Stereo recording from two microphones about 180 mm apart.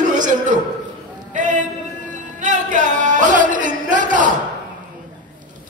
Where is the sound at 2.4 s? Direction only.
45° right (ahead or behind).